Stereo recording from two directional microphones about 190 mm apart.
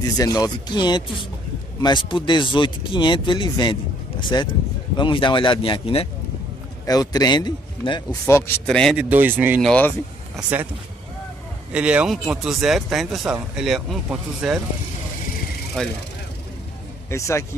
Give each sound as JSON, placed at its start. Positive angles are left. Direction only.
{"t": 0.2, "sound": "a man's voice", "side_deg": 20}
{"t": 8.6, "sound": "speech", "side_deg": 5}
{"t": 9.1, "sound": "speech", "side_deg": -10}
{"t": 9.6, "sound": "speech", "side_deg": 5}
{"t": 11.7, "sound": "speech", "side_deg": -5}
{"t": 15.8, "sound": "speech", "side_deg": 5}
{"t": 17.1, "sound": "a man's voice", "side_deg": 15}